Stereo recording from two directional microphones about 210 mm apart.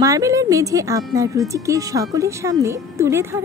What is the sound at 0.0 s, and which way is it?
Speech, 15° right (ahead or behind).